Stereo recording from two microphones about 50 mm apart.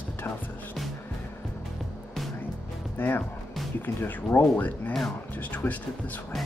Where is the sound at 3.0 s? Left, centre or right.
Left.